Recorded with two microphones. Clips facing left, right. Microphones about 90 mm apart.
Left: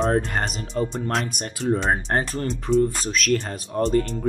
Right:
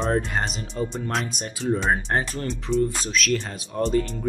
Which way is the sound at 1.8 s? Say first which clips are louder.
Left 1 dB; 40° left (ahead or behind).